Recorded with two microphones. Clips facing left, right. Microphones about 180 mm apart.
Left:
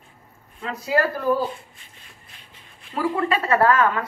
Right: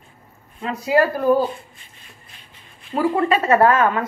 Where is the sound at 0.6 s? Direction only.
15° right (ahead or behind).